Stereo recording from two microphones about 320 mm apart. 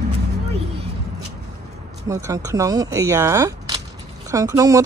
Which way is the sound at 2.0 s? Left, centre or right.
Centre.